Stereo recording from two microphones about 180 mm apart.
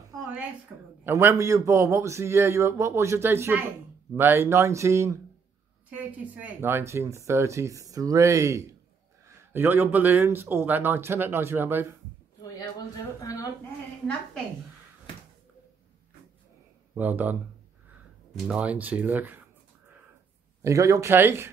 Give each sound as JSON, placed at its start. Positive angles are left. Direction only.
{"t": 1.0, "sound": "speech", "side_deg": -15}
{"t": 13.2, "sound": "a woman's voice", "side_deg": 20}
{"t": 16.9, "sound": "speech", "side_deg": -10}
{"t": 20.6, "sound": "speech", "side_deg": -20}